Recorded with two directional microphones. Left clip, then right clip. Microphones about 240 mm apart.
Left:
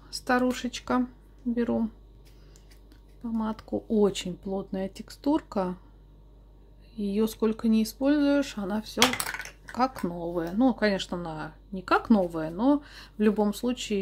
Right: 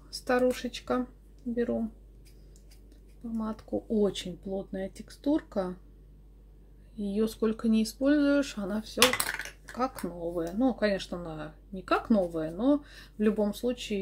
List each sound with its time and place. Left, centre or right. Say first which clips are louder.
0.1 s speech: left 1 dB; centre
3.3 s speech: left 2 dB; centre
7.0 s speech: left 2 dB; centre